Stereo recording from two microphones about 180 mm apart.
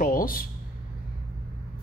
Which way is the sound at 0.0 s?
50° left (ahead or behind).